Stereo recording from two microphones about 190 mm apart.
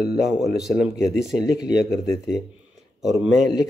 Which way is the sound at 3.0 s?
Centre (ahead or behind).